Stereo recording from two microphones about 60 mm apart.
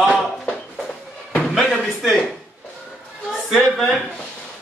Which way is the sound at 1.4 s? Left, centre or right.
Centre.